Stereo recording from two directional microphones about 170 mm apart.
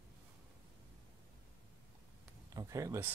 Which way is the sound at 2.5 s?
20° right (ahead or behind).